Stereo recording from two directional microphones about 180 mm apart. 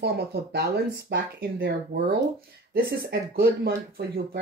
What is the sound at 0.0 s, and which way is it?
Speech, 65° right (ahead or behind).